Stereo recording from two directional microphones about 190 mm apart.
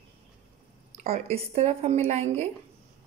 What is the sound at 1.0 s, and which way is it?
Speech, 35° right (ahead or behind).